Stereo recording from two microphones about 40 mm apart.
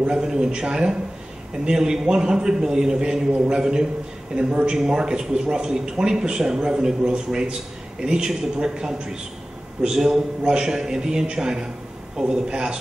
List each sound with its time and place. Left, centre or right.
0.0 s a man's voice: right